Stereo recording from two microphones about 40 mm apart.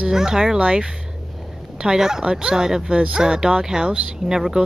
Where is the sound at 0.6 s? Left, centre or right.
Right.